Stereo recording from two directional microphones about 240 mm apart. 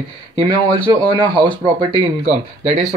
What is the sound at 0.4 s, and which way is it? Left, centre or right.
A man's voice, right.